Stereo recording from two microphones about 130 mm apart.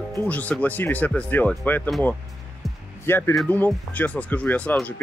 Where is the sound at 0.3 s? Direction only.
10° left (ahead or behind).